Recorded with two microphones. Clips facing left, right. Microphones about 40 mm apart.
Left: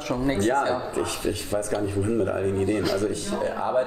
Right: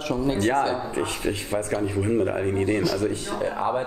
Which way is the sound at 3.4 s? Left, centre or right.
Centre.